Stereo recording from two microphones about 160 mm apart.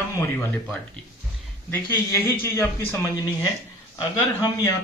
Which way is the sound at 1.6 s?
15° left (ahead or behind).